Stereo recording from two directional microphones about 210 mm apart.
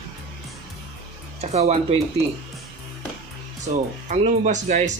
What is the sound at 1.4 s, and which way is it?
Speech, 30° right (ahead or behind).